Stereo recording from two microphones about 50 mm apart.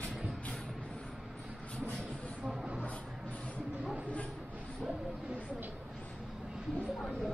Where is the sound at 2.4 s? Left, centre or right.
Centre.